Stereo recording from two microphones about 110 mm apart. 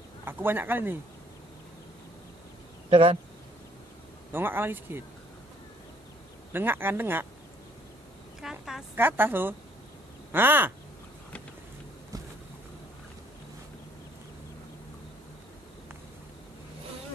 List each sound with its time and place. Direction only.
0.2 s speech: 20° right (ahead or behind)
2.9 s a man's voice: 55° right (ahead or behind)
4.3 s speech: 20° right (ahead or behind)
6.5 s speech: 20° right (ahead or behind)
8.4 s fowl: 5° right (ahead or behind)
8.9 s speech: 20° right (ahead or behind)